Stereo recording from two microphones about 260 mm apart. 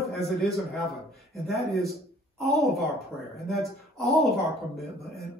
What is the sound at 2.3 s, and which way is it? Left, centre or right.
A woman's voice, centre.